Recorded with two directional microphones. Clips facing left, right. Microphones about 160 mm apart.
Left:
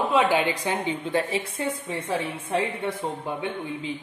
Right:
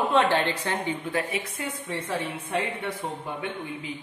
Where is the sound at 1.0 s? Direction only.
30° left (ahead or behind).